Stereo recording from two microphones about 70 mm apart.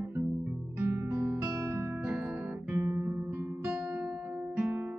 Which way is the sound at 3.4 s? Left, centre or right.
Right.